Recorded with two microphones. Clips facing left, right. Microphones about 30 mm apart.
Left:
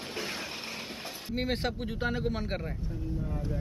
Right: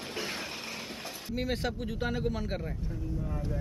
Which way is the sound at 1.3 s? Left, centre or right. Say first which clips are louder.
Left 1 dB; left.